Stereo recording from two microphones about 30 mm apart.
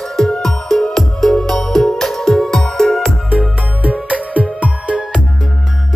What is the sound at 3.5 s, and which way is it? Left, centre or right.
Music, right.